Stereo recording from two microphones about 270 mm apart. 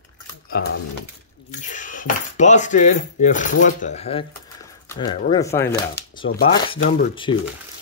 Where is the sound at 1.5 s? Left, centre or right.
Left.